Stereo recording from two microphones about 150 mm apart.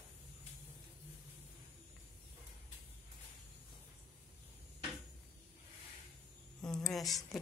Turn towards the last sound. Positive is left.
turn(degrees=0)  # may be behind; listen again after turning